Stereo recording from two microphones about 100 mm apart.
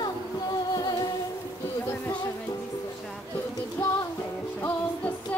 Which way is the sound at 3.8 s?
25° left (ahead or behind).